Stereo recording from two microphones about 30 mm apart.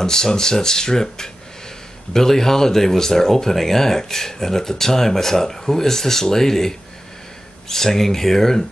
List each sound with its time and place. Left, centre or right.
0.0 s speech: left